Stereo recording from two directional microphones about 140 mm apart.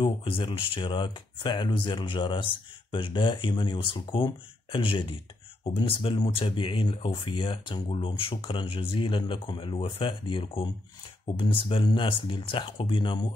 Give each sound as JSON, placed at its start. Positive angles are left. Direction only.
{"t": 0.0, "sound": "speech", "side_deg": 35}